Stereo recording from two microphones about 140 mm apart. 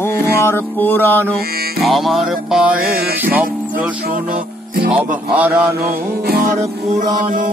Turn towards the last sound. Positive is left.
turn(degrees=-90)